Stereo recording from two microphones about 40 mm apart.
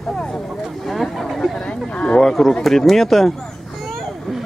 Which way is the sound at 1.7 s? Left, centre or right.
Left.